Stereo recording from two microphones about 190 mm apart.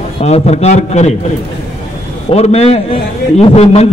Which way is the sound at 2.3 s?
35° left (ahead or behind).